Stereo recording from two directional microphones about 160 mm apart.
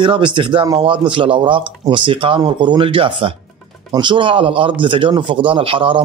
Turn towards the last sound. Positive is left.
turn(degrees=-35)  # may be behind; listen again after turning